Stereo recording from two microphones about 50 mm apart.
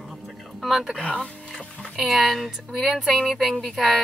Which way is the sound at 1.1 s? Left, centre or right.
Centre.